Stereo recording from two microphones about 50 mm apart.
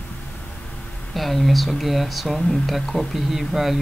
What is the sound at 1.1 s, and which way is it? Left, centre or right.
Speech, centre.